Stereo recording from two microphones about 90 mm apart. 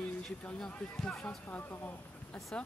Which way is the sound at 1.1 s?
20° left (ahead or behind).